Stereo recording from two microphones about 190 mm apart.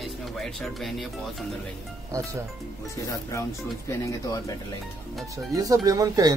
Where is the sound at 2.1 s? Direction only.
15° right (ahead or behind).